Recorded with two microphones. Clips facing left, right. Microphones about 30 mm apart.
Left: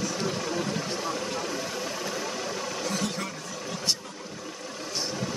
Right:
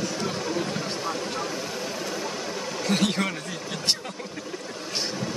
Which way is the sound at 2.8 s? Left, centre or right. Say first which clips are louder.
Right 9 dB; right.